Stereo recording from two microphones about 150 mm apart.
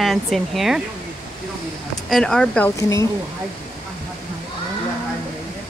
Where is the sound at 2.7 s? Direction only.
20° left (ahead or behind).